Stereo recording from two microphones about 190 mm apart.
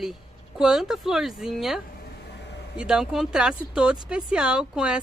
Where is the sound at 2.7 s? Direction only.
5° right (ahead or behind).